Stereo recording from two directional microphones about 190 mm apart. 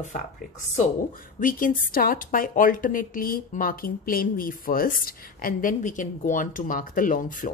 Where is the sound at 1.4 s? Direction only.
45° left (ahead or behind).